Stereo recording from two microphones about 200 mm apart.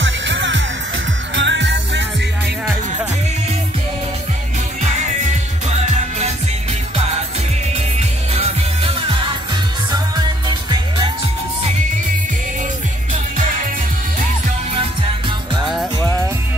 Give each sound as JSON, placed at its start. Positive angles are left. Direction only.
{"t": 0.0, "sound": "music", "side_deg": -65}
{"t": 5.2, "sound": "music", "side_deg": -35}
{"t": 8.3, "sound": "music", "side_deg": -30}
{"t": 14.7, "sound": "music", "side_deg": -25}